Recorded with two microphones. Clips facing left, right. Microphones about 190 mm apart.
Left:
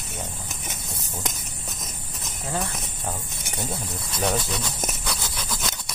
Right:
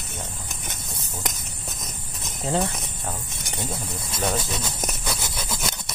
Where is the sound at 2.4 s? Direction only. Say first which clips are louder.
Right 5 dB; 25° right (ahead or behind).